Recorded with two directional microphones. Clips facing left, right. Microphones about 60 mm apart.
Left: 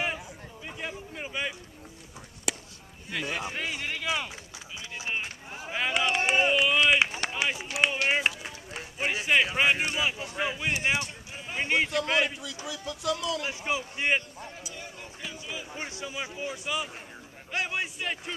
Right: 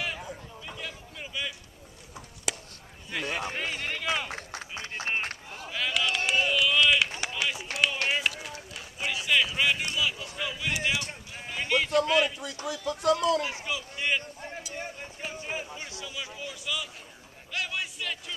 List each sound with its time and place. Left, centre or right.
0.7 s a sound: left
2.5 s chop: centre
3.1 s speech: centre
4.3 s run: right
5.5 s run: left
10.8 s a sound: left
12.1 s speech: left
12.4 s speech: right
13.7 s speech: left
14.7 s a sound: right
15.7 s speech: left
17.5 s a sound: left